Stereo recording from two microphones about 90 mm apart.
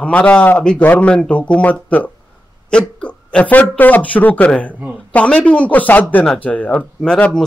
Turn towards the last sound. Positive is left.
turn(degrees=10)  # may be behind; listen again after turning